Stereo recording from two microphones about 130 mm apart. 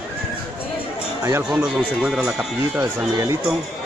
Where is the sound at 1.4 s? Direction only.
5° right (ahead or behind).